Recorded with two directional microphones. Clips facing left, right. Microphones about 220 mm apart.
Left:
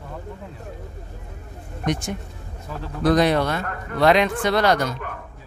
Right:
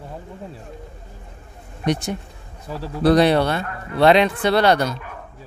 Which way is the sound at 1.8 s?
35° right (ahead or behind).